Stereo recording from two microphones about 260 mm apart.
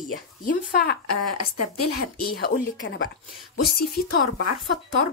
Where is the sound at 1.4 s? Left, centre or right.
Left.